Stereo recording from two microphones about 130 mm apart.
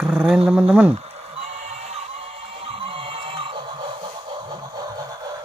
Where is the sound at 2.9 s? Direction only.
45° right (ahead or behind).